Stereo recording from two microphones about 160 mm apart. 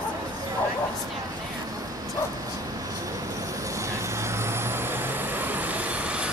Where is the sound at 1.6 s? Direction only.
20° right (ahead or behind).